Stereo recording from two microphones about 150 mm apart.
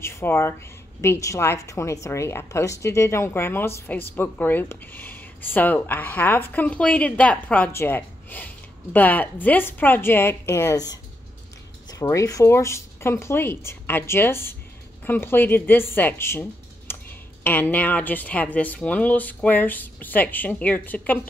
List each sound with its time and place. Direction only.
0.0 s a woman's voice: 15° left (ahead or behind)